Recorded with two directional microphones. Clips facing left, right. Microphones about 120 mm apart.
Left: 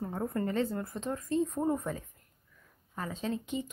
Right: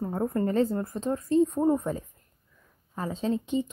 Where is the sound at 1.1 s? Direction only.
30° right (ahead or behind).